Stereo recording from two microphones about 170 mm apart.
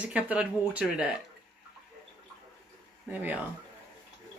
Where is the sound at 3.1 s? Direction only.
10° right (ahead or behind).